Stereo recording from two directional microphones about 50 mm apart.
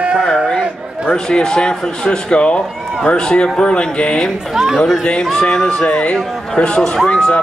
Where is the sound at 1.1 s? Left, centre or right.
Centre.